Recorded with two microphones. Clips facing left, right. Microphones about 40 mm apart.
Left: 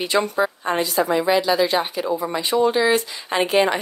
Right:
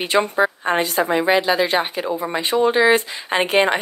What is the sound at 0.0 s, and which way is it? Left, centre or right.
A woman's voice, right.